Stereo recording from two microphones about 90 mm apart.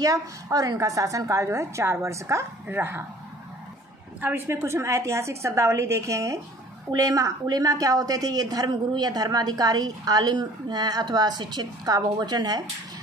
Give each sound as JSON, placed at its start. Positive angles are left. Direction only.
{"t": 0.0, "sound": "a woman's voice", "side_deg": -40}
{"t": 4.2, "sound": "a woman's voice", "side_deg": -25}